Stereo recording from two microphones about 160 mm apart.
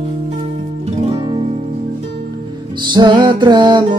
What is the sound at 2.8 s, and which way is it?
Music, 25° right (ahead or behind).